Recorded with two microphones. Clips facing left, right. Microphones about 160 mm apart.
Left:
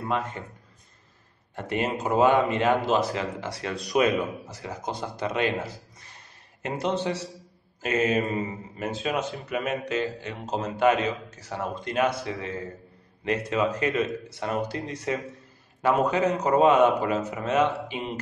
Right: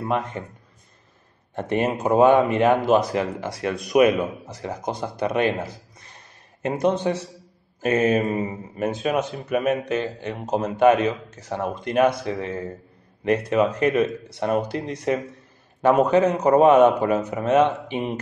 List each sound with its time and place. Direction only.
1.5 s speech: 20° right (ahead or behind)
6.6 s speech: 15° right (ahead or behind)
16.2 s speech: 20° right (ahead or behind)